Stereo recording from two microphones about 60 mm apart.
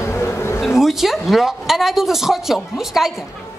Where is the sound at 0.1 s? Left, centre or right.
Left.